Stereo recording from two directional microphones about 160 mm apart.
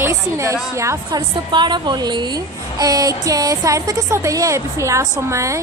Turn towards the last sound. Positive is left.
turn(degrees=-20)  # may be behind; listen again after turning